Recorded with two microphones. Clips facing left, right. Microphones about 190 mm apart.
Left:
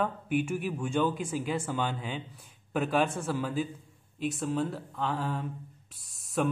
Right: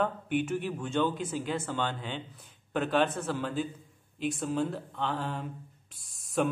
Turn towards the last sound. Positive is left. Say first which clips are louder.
# even
turn(degrees=5)  # may be behind; listen again after turning